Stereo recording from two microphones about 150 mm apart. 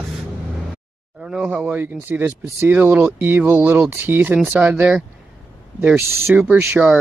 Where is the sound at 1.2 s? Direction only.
5° right (ahead or behind).